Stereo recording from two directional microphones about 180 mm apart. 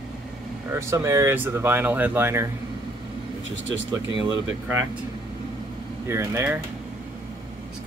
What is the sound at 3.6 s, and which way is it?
Speech, 90° right.